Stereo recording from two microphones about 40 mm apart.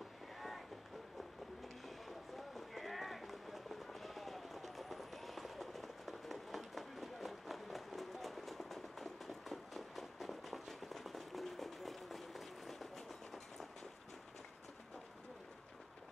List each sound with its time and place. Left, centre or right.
2.0 s run: centre